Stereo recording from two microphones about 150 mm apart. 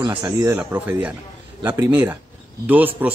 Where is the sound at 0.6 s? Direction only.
10° right (ahead or behind).